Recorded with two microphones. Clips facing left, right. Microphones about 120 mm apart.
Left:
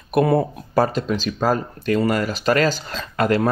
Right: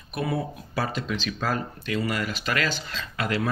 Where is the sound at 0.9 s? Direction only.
40° left (ahead or behind).